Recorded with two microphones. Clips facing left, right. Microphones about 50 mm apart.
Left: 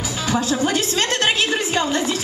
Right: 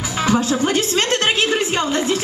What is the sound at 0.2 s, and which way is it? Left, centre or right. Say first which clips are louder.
A woman's voice: right 3 dB; right.